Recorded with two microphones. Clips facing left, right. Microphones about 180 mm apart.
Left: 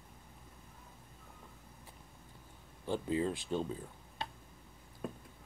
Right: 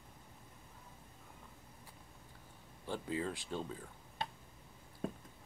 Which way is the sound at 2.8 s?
25° left (ahead or behind).